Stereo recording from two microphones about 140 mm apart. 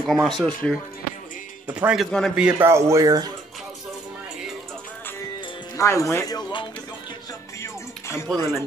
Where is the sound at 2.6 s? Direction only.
20° right (ahead or behind).